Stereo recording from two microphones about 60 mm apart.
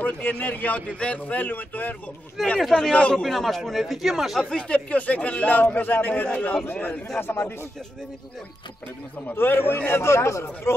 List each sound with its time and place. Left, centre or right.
0.0 s a man's voice: left
2.4 s speech: centre
2.7 s a man's voice: centre
3.2 s speech: centre
4.4 s a man's voice: centre; by 7.5 s left
9.3 s speech: left